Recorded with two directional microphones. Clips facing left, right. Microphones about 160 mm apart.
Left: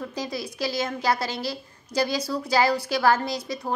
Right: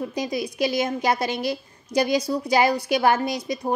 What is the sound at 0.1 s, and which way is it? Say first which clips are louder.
A woman's voice: right 4 dB; 15° right (ahead or behind).